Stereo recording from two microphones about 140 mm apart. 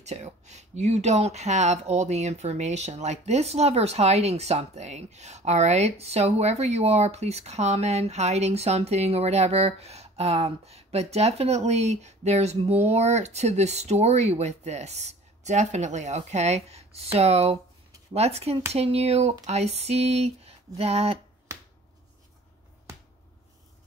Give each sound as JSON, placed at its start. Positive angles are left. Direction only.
{"t": 0.0, "sound": "speech", "side_deg": -55}